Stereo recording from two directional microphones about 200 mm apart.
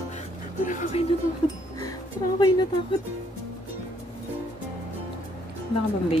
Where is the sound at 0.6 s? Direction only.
40° left (ahead or behind).